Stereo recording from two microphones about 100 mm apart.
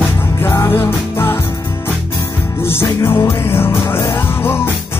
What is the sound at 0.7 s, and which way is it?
Music, 25° left (ahead or behind).